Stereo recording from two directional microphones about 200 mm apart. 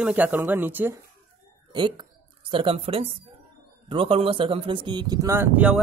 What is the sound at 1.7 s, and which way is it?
Speech, 25° right (ahead or behind).